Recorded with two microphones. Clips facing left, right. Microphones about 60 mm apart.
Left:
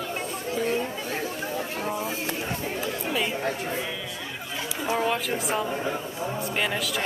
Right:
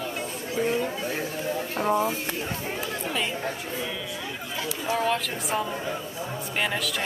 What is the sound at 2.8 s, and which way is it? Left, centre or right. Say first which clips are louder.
Speech: left 2 dB; centre.